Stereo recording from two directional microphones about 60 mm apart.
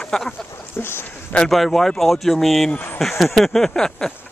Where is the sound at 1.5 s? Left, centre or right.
Centre.